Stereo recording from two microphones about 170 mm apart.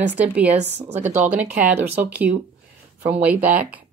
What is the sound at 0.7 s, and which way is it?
Speech, 40° right (ahead or behind).